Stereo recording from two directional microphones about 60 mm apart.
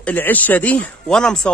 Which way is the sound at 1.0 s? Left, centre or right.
Centre.